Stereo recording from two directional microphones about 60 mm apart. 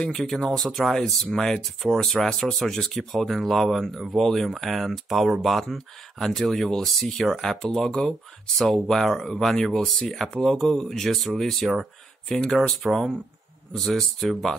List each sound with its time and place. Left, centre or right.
0.1 s speech: centre
12.3 s speech: centre